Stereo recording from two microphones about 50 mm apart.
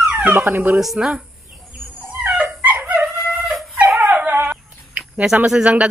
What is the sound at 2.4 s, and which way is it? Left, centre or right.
Dog, right.